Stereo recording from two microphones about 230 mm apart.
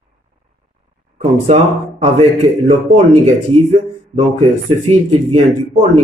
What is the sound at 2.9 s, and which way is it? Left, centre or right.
Speech, right.